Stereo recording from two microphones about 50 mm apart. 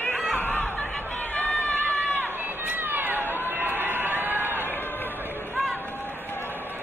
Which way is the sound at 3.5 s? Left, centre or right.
Right.